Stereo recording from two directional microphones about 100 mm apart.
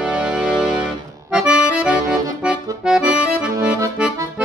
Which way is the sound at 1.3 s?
10° right (ahead or behind).